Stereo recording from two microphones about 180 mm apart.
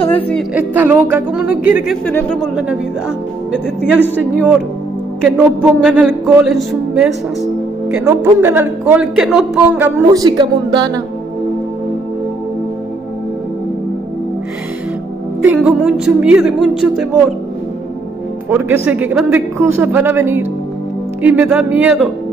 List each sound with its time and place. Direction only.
0.1 s music: 5° left (ahead or behind)
0.6 s a man's voice: 10° right (ahead or behind)
2.0 s speech: 10° left (ahead or behind)
3.5 s music: 5° right (ahead or behind)
4.0 s speech: 10° left (ahead or behind)
5.2 s music: 5° right (ahead or behind)
8.0 s a man's voice: 15° right (ahead or behind)
9.9 s speech: 20° right (ahead or behind)
15.4 s music: 10° right (ahead or behind)
18.5 s a man's voice: 10° right (ahead or behind)